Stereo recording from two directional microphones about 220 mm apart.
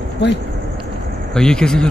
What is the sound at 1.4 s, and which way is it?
Speech, 5° left (ahead or behind).